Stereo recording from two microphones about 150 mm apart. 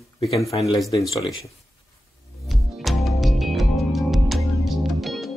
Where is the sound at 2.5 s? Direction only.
Centre (ahead or behind).